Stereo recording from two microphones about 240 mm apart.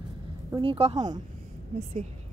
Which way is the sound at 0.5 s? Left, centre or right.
Right.